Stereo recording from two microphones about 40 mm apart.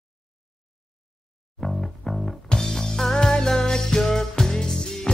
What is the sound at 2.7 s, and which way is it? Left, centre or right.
Music, centre.